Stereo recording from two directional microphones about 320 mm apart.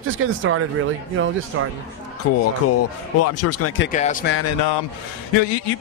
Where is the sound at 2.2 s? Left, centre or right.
Left.